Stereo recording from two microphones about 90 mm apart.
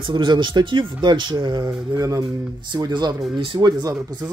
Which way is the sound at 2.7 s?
55° right (ahead or behind).